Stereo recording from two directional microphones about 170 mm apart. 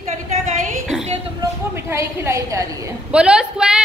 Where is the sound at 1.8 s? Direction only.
15° right (ahead or behind).